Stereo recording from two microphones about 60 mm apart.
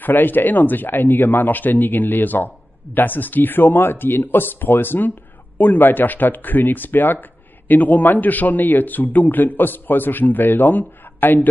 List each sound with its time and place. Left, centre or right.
0.0 s speech: left